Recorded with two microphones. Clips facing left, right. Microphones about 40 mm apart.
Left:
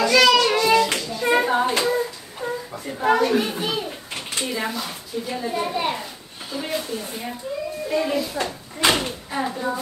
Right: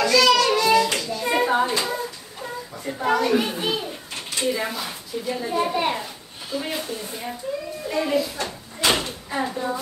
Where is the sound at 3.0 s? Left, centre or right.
Centre.